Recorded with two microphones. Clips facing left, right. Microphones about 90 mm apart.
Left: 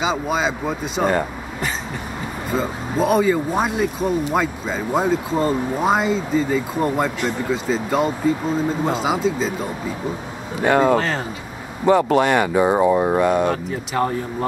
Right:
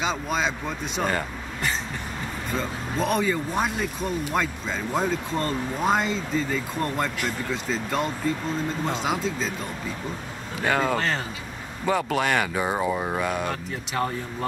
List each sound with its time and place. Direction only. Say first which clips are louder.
0.0 s speech: left 5 dB; 5° left (ahead or behind)
13.2 s speech: left 9 dB; 5° left (ahead or behind)